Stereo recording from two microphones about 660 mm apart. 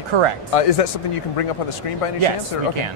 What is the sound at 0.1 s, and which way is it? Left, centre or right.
Speech, right.